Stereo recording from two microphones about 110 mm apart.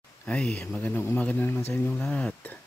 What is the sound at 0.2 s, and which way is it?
Speech, 10° left (ahead or behind).